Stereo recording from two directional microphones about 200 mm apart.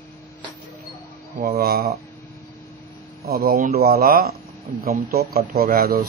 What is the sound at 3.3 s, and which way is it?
Speech, 50° right (ahead or behind).